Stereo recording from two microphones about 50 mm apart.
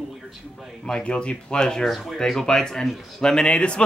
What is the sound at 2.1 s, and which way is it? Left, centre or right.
Speech, centre.